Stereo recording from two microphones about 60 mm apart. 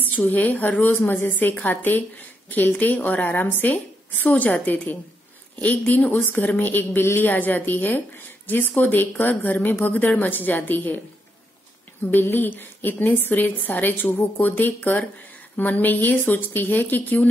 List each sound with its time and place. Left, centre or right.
0.0 s a woman's voice: left
12.1 s a woman's voice: left